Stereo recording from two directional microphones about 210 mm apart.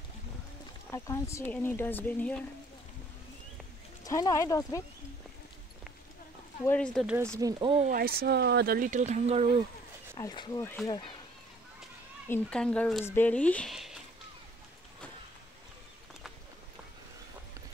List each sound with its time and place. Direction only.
0.9 s speech: 15° left (ahead or behind)
4.0 s speech: 15° left (ahead or behind)
6.6 s speech: 5° left (ahead or behind)
7.3 s speech: 20° right (ahead or behind)
7.9 s speech: 45° right (ahead or behind)
10.1 s speech: 20° left (ahead or behind)
12.3 s speech: 5° left (ahead or behind)